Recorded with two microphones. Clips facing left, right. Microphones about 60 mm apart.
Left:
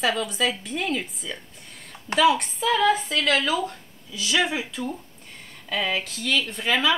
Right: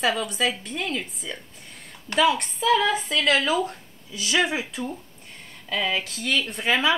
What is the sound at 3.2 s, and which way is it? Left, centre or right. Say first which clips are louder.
Speech: right 1 dB; centre.